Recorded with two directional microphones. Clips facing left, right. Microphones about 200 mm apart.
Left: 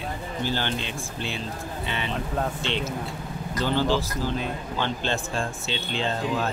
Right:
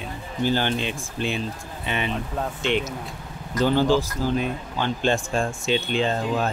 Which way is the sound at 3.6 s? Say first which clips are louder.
Right 5 dB; 15° right (ahead or behind).